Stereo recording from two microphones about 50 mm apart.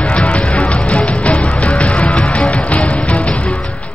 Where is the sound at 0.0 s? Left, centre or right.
Left.